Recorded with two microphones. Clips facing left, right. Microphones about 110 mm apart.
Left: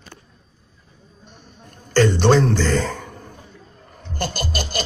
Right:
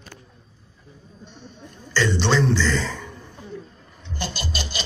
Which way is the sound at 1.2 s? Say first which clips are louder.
Right 3 dB; 50° left (ahead or behind).